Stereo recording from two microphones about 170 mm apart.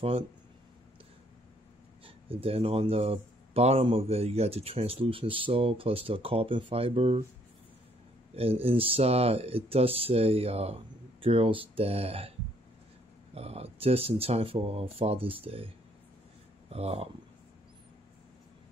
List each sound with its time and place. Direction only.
2.0 s speech: 35° right (ahead or behind)
8.4 s speech: 35° right (ahead or behind)